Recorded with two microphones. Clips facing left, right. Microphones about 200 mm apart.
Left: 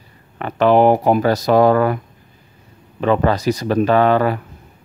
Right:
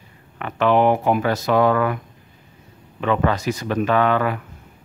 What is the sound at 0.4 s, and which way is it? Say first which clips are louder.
Speech: left 4 dB; 35° left (ahead or behind).